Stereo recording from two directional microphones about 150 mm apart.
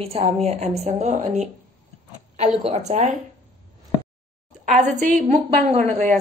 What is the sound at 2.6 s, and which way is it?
Speech, 50° right (ahead or behind).